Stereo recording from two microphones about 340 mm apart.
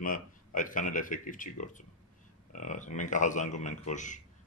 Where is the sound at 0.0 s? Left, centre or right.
Left.